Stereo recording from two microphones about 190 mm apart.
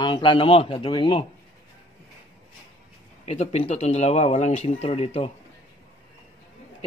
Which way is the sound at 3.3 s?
35° left (ahead or behind).